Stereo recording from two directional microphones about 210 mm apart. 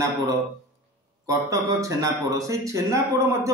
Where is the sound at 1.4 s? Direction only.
15° right (ahead or behind).